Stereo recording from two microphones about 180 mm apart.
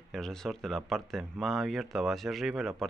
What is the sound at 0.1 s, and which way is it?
Speech, centre (ahead or behind).